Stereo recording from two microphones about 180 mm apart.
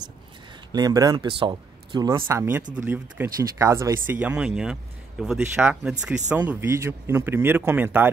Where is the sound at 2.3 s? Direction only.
10° right (ahead or behind).